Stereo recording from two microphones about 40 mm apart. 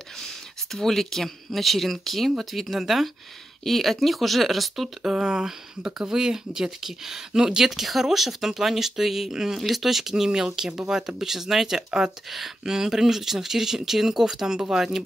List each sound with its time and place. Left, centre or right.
0.1 s speech: centre
5.1 s speech: centre
7.7 s speech: centre